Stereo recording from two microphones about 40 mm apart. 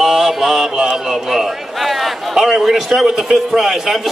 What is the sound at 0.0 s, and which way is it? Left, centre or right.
Mantra, centre.